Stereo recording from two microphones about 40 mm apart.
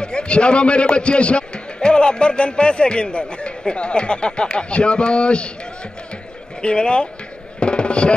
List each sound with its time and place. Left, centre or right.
0.0 s a man's voice: left
6.6 s a man's voice: left
7.6 s music: left